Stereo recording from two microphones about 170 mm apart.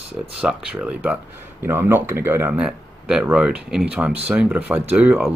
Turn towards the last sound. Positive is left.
turn(degrees=-5)  # may be behind; listen again after turning